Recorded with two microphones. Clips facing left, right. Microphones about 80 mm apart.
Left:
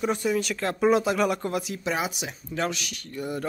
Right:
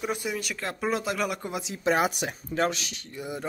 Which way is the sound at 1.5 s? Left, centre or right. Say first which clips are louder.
Left 4 dB; right.